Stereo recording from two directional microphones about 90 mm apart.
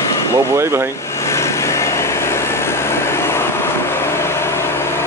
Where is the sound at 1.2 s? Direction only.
30° left (ahead or behind).